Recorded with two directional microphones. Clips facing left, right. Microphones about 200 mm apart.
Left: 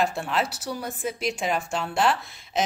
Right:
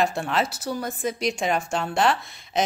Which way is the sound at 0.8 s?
5° left (ahead or behind).